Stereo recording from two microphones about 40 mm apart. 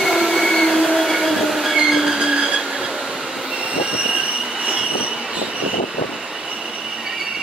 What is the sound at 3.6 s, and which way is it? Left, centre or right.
Train, right.